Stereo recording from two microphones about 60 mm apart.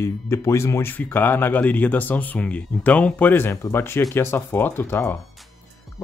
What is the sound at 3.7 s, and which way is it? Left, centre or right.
Speech, left.